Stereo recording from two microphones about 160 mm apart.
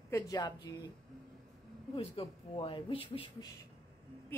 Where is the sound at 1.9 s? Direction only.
35° left (ahead or behind).